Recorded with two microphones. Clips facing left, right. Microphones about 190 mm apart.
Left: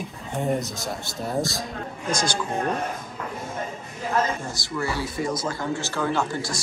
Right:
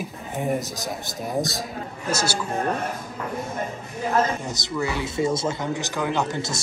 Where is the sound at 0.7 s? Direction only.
20° right (ahead or behind).